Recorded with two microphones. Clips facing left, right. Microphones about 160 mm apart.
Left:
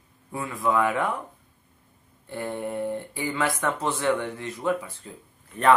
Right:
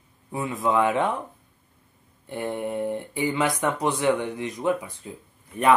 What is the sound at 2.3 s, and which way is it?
Speech, 20° right (ahead or behind).